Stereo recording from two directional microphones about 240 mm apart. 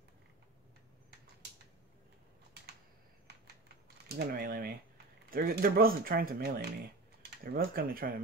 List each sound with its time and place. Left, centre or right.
3.6 s mechanisms: right
7.4 s speech: right